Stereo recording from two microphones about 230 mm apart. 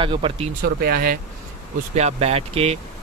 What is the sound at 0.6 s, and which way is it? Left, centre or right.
Speech, right.